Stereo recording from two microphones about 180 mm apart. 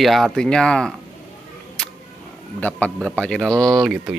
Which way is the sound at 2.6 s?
10° left (ahead or behind).